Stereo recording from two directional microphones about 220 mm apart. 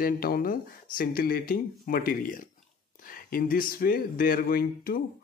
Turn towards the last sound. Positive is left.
turn(degrees=40)  # may be behind; listen again after turning